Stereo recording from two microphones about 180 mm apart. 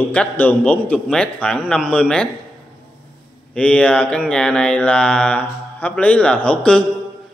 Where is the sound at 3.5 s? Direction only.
5° left (ahead or behind).